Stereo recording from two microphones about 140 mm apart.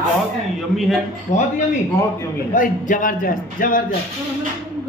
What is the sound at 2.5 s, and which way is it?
A man's voice, 70° left (ahead or behind).